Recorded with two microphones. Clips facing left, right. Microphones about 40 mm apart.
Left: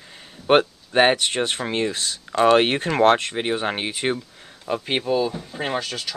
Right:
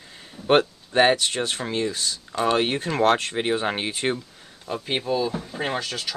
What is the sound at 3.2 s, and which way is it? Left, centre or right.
Speech, centre.